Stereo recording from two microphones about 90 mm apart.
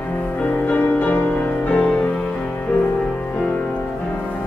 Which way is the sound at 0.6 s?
15° left (ahead or behind).